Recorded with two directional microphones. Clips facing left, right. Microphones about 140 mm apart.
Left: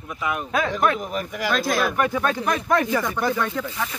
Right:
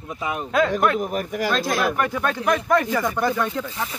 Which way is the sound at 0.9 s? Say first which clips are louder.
Right 4 dB; 45° right (ahead or behind).